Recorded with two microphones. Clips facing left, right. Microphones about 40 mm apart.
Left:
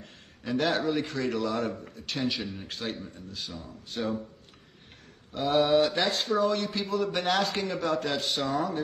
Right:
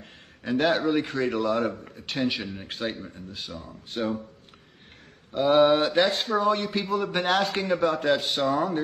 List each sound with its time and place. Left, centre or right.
0.0 s a man's voice: centre
5.3 s a man's voice: right